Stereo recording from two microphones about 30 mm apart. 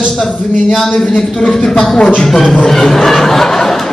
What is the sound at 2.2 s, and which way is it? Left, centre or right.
Music, centre.